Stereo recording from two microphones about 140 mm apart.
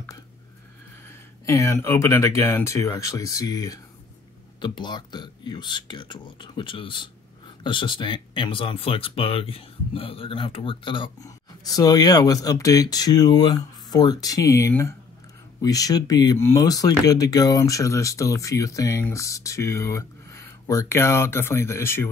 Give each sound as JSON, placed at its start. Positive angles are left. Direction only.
{"t": 1.0, "sound": "speech", "side_deg": 20}